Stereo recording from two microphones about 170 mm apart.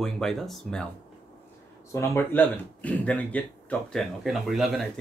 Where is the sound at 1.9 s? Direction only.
15° left (ahead or behind); by 5.0 s centre (ahead or behind).